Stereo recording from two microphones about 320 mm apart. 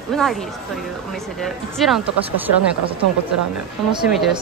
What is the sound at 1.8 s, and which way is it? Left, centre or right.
Speech, centre.